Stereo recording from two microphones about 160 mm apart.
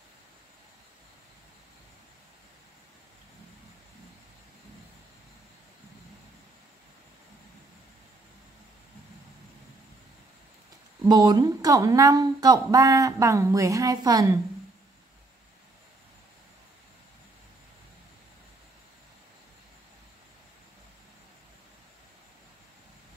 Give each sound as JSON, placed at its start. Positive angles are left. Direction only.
{"t": 11.1, "sound": "speech", "side_deg": -25}